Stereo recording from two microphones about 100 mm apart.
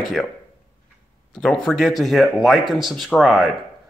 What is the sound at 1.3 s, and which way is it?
Speech, 5° left (ahead or behind).